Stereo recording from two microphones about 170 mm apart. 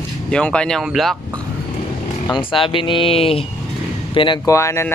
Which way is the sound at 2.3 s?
30° left (ahead or behind).